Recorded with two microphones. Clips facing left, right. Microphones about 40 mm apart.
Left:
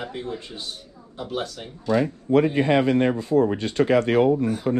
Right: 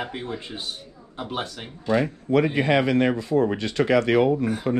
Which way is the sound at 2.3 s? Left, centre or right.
Right.